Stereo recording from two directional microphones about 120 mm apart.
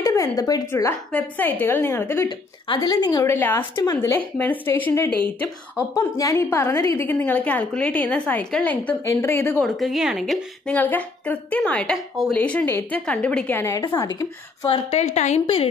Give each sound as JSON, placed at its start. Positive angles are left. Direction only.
{"t": 0.0, "sound": "a sound", "side_deg": 25}
{"t": 0.7, "sound": "a woman's voice", "side_deg": 25}
{"t": 2.2, "sound": "speech", "side_deg": 35}
{"t": 3.3, "sound": "a woman's voice", "side_deg": 20}
{"t": 5.9, "sound": "a woman's voice", "side_deg": 30}
{"t": 9.0, "sound": "a woman's voice", "side_deg": 20}
{"t": 9.6, "sound": "a woman's voice", "side_deg": 0}
{"t": 10.8, "sound": "a woman's voice", "side_deg": 15}
{"t": 13.6, "sound": "a woman's voice", "side_deg": 20}
{"t": 15.0, "sound": "a woman's voice", "side_deg": 70}
{"t": 15.4, "sound": "a woman's voice", "side_deg": 50}